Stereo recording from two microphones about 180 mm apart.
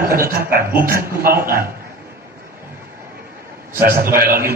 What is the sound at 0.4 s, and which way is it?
Speech, 55° right (ahead or behind).